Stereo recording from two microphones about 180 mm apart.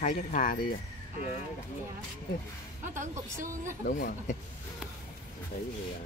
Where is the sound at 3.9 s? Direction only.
45° left (ahead or behind).